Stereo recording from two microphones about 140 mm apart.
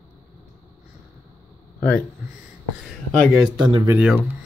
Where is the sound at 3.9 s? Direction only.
5° right (ahead or behind).